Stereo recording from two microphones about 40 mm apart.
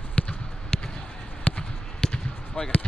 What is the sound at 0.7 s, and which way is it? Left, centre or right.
Basketball bounce, centre.